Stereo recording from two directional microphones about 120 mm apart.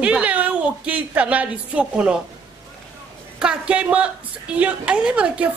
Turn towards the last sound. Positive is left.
turn(degrees=-10)  # may be behind; listen again after turning